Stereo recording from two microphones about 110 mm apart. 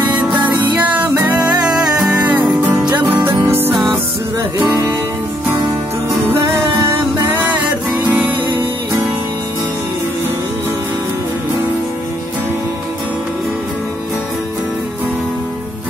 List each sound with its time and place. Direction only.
0.1 s music: 15° right (ahead or behind)
6.2 s music: 20° right (ahead or behind)